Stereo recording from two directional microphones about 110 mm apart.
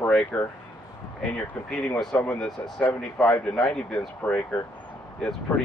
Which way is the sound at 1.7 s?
5° left (ahead or behind).